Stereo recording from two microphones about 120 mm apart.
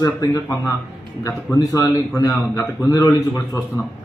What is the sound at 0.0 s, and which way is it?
A man's voice, 25° left (ahead or behind).